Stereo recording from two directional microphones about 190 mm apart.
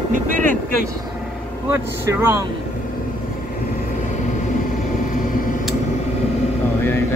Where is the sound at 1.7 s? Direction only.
15° right (ahead or behind).